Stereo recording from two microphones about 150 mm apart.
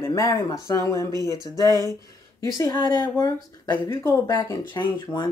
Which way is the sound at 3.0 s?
25° left (ahead or behind).